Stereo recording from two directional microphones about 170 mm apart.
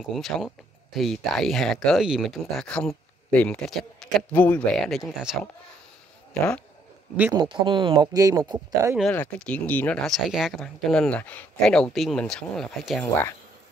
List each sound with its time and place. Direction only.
0.1 s speech: centre (ahead or behind)
7.3 s speech: 30° right (ahead or behind)
9.1 s speech: 10° left (ahead or behind)